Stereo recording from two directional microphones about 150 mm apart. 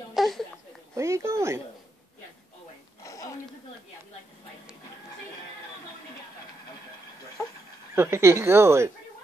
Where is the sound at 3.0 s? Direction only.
20° left (ahead or behind).